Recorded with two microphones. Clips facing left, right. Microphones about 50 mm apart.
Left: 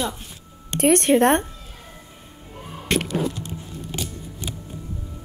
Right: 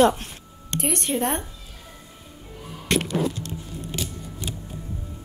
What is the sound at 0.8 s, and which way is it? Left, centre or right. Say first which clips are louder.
Speech: left 9 dB; left.